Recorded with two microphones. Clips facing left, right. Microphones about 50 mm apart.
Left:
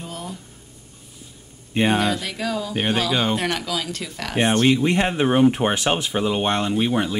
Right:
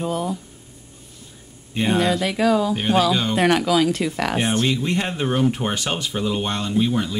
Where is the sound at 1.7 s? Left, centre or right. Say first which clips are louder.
Left 2 dB; centre.